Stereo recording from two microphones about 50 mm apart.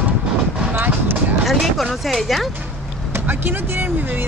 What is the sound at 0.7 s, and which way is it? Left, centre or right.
Vehicle, right.